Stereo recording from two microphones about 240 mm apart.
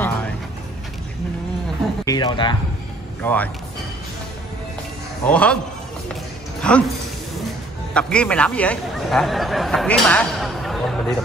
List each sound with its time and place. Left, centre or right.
2.0 s speech: centre
3.2 s speech: centre
5.2 s a man's voice: centre
6.7 s speech: centre
7.9 s speech: centre